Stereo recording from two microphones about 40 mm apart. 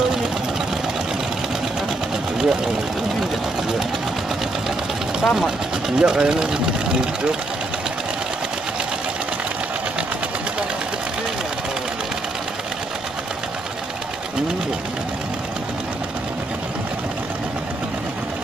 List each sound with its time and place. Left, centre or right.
2.3 s speech: centre
5.2 s speech: centre
5.9 s speech: centre